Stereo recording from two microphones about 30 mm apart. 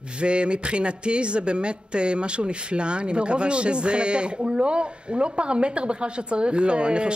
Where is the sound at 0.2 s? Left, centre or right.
Right.